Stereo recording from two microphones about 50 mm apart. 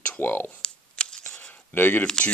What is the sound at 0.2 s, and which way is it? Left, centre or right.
Speech, left.